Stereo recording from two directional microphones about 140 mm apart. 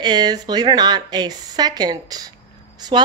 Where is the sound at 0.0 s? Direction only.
30° right (ahead or behind).